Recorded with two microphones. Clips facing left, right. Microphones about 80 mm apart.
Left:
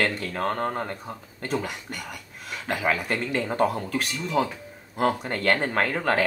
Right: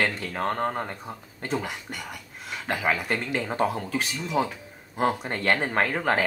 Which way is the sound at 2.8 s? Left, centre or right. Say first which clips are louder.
Left 1 dB; centre.